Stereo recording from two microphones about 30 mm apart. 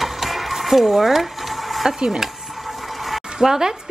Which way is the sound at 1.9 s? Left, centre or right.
Right.